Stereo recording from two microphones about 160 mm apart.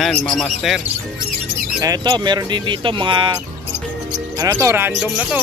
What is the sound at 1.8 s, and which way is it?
Speech, 25° right (ahead or behind).